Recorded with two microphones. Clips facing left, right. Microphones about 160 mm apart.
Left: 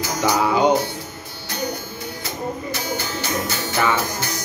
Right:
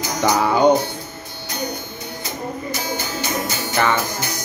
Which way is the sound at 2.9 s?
15° right (ahead or behind).